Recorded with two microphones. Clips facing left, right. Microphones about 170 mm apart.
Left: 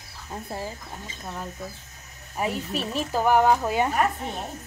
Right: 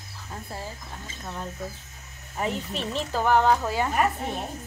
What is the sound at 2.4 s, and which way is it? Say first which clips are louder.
A woman's voice: left 1 dB; 10° left (ahead or behind).